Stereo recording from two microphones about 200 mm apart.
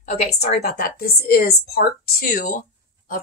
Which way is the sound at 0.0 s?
35° left (ahead or behind).